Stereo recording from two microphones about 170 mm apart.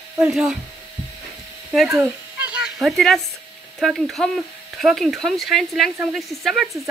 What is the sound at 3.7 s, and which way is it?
Speech, centre (ahead or behind).